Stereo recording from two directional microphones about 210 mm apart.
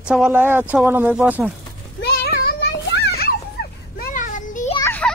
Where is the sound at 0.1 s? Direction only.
5° right (ahead or behind).